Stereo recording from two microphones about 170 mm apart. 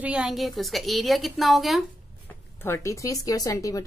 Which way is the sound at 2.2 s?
15° left (ahead or behind).